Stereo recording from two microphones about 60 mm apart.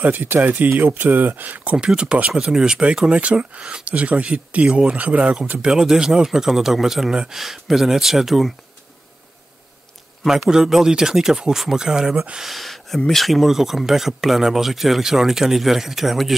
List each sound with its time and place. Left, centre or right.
0.0 s speech: right; by 8.5 s centre
10.2 s speech: centre
12.4 s speech: centre